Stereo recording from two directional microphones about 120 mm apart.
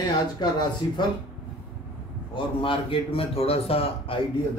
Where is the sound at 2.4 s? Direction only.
45° left (ahead or behind).